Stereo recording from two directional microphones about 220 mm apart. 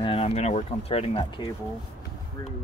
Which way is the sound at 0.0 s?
25° left (ahead or behind).